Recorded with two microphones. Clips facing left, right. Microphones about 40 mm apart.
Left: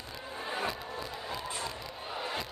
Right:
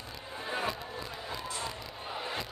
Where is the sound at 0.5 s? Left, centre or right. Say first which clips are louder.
Right 1 dB; centre.